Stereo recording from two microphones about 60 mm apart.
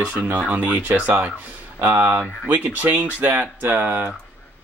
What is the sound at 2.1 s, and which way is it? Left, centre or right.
Speech, right.